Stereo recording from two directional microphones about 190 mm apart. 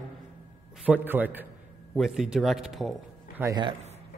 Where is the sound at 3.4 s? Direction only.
15° right (ahead or behind).